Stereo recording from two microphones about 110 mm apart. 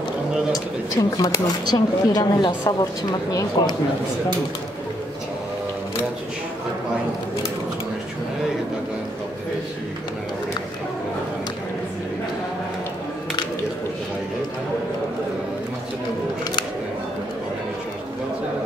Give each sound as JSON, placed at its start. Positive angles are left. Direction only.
{"t": 0.9, "sound": "speech", "side_deg": 40}